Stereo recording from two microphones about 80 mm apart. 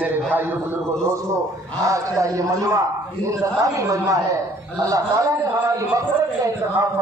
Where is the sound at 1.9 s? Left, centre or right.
Right.